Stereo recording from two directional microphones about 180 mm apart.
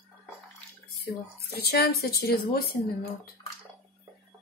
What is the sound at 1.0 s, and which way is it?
Speech, 60° left (ahead or behind).